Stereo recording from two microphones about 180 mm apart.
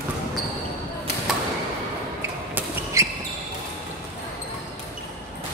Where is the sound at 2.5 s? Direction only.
15° right (ahead or behind).